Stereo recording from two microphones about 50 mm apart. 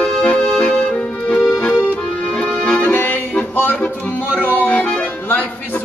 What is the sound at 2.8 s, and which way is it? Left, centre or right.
Music, left.